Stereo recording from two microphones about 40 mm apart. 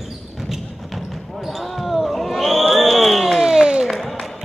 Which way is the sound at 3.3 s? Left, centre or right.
Centre.